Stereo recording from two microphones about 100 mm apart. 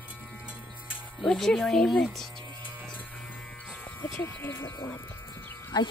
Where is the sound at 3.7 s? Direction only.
15° left (ahead or behind).